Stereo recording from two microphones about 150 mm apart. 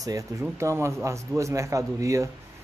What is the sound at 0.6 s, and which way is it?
A man's voice, 20° right (ahead or behind).